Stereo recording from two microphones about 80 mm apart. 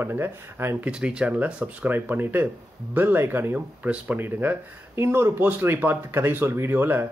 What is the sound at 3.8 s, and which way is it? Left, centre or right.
Speech, centre.